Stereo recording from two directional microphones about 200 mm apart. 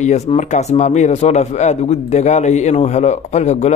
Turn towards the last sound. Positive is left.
turn(degrees=35)  # may be behind; listen again after turning